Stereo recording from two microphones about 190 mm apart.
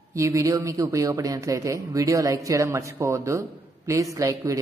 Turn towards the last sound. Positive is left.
turn(degrees=-15)  # may be behind; listen again after turning